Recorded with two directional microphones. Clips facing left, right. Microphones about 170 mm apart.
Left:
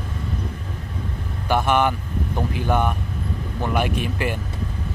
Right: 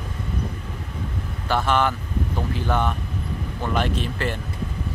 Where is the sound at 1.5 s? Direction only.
15° left (ahead or behind).